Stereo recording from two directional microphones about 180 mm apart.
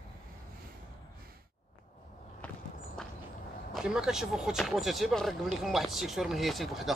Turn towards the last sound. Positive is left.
turn(degrees=0)  # may be behind; listen again after turning